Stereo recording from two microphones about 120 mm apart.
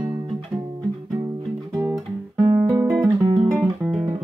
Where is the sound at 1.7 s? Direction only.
25° right (ahead or behind).